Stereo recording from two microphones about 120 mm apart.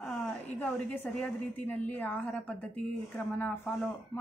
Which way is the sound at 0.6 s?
15° left (ahead or behind).